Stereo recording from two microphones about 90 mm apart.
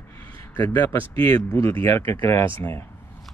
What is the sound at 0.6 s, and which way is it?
Speech, 25° left (ahead or behind).